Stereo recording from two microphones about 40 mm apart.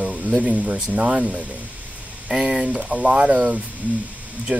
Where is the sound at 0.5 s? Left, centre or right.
Right.